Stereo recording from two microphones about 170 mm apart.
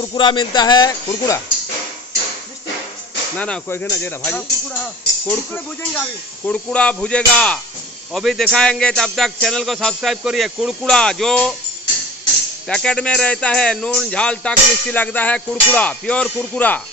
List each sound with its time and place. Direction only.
0.0 s speech: 30° left (ahead or behind)
3.3 s a man's voice: 5° left (ahead or behind)
12.6 s speech: 5° left (ahead or behind)